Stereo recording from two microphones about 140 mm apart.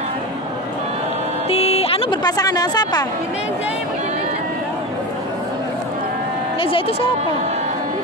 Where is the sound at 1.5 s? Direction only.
45° left (ahead or behind).